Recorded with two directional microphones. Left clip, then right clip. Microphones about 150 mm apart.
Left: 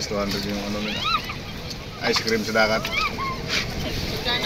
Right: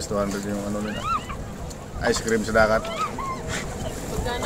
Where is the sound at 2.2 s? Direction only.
10° right (ahead or behind).